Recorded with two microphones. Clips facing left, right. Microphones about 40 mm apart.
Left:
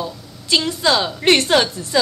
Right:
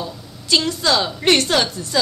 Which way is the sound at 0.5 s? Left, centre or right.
Centre.